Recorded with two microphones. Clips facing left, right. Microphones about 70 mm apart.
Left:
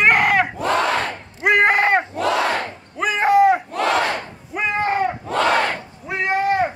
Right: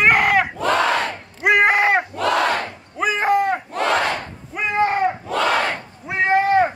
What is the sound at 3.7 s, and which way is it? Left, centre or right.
Battle cry, right.